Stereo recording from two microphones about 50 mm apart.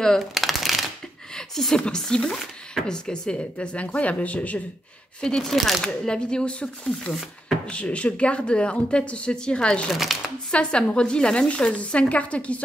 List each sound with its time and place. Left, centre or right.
0.3 s shuffling cards: centre
1.3 s speech: centre
3.1 s speech: centre
5.2 s speech: centre
6.0 s speech: centre
10.1 s speech: centre
10.5 s speech: centre